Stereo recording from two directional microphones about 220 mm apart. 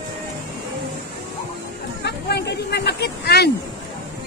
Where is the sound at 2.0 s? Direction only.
50° left (ahead or behind).